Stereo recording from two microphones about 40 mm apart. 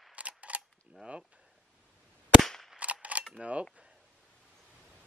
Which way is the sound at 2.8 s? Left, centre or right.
Right.